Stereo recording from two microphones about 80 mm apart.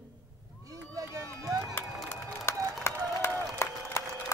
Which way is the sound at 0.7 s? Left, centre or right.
Right.